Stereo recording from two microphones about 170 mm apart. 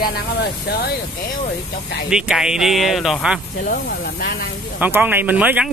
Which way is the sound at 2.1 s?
5° right (ahead or behind).